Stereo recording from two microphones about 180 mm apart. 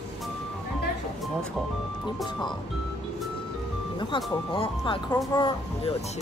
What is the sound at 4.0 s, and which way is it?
Speech, 25° left (ahead or behind).